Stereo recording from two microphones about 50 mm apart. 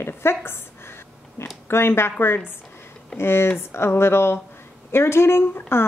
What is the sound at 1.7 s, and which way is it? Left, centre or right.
A woman's voice, left.